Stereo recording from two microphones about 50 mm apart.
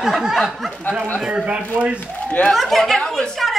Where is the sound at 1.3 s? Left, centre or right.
Centre.